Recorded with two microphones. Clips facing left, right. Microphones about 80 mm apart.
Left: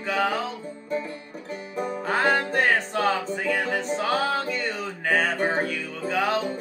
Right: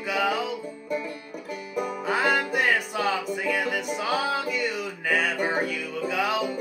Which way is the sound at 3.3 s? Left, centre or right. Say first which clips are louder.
Left 1 dB; left.